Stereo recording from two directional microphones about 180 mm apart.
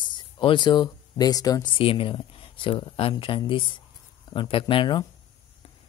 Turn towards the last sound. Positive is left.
turn(degrees=25)  # may be behind; listen again after turning